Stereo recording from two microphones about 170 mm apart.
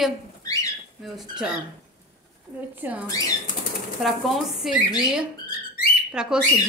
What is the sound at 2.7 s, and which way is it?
Speech, 10° right (ahead or behind).